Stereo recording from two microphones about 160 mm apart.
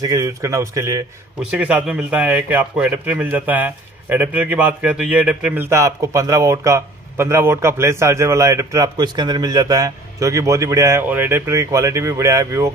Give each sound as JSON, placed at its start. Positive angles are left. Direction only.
{"t": 0.0, "sound": "a man's voice", "side_deg": -20}